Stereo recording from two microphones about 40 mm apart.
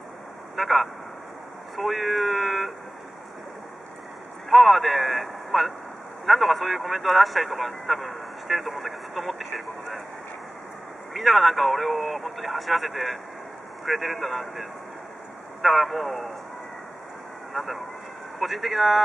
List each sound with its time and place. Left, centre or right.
0.6 s speech: centre
4.5 s a man's voice: centre
11.1 s a man's voice: centre
17.5 s a man's voice: centre